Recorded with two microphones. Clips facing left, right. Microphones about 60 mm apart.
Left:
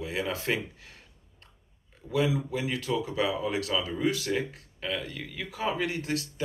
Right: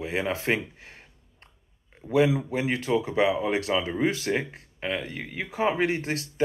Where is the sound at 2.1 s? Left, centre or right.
Right.